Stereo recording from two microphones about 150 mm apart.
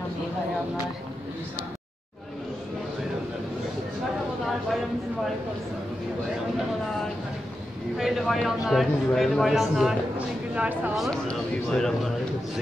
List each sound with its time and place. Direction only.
8.0 s speech: centre (ahead or behind)